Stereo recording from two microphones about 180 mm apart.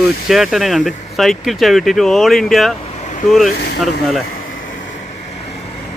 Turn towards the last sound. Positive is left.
turn(degrees=35)  # may be behind; listen again after turning